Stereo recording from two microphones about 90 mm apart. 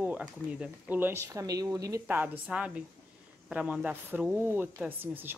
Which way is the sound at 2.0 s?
20° right (ahead or behind).